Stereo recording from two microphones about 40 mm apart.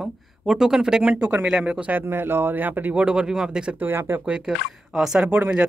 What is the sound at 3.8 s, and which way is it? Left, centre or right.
Speech, right.